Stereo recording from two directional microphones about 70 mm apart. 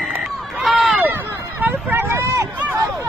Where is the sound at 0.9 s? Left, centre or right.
Right.